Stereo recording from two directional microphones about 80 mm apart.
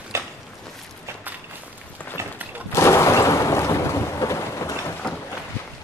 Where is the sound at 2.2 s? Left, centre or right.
Right.